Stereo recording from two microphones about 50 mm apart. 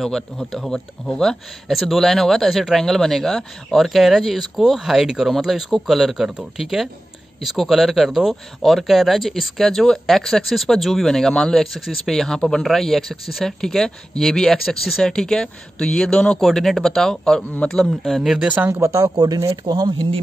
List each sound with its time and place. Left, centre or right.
0.5 s speech: centre
11.6 s speech: centre
16.4 s speech: centre
17.4 s a man's voice: left
17.6 s speech: centre
18.7 s speech: right